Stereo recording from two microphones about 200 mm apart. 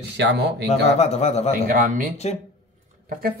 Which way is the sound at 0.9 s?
35° left (ahead or behind).